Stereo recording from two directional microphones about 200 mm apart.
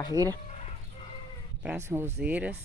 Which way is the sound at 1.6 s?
10° right (ahead or behind).